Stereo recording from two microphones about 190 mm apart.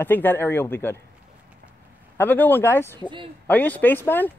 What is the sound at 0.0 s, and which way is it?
Speech, 10° left (ahead or behind).